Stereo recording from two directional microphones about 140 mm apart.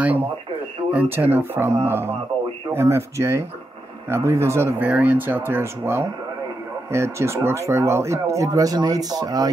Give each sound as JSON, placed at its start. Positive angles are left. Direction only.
{"t": 0.9, "sound": "speech", "side_deg": -15}